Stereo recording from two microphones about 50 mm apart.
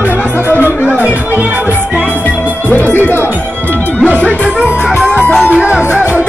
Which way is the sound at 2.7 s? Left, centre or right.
Left.